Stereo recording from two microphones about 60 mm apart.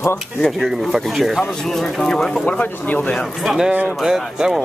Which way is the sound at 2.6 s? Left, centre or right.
Left.